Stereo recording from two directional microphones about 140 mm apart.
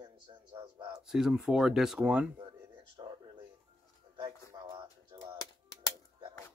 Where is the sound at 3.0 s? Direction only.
30° right (ahead or behind).